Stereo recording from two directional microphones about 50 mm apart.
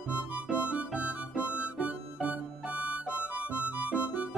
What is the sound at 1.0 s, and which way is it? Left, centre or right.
Music, right.